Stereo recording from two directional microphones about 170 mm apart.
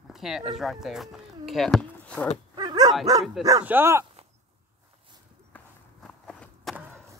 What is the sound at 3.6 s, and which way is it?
Speech, 15° right (ahead or behind).